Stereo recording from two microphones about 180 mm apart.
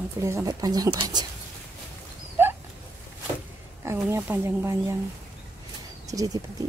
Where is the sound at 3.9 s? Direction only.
15° right (ahead or behind).